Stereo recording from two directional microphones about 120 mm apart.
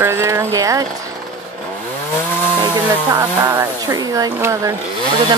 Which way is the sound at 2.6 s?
30° right (ahead or behind).